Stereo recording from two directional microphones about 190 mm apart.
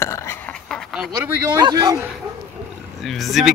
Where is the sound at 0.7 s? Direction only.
Centre (ahead or behind).